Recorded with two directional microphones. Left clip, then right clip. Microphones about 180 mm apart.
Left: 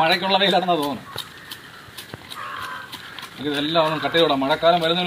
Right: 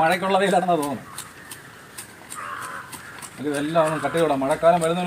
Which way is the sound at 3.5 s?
15° right (ahead or behind).